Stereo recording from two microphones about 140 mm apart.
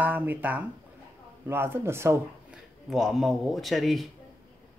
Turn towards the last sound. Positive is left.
turn(degrees=0)  # may be behind; listen again after turning